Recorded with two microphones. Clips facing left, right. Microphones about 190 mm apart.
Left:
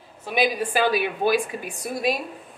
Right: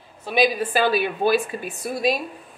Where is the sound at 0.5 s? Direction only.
15° left (ahead or behind).